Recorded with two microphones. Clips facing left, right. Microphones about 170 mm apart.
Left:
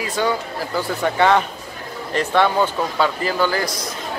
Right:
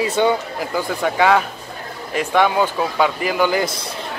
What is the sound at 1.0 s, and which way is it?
A man's voice, 5° right (ahead or behind).